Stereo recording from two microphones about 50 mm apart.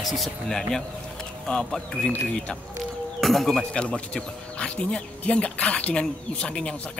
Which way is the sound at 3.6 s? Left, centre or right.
Centre.